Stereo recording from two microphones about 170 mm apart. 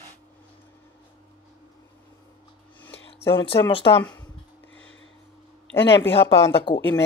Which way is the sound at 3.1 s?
30° left (ahead or behind).